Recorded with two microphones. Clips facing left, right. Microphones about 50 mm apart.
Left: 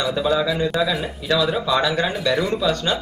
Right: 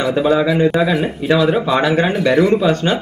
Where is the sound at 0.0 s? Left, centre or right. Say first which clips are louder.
Right 5 dB; right.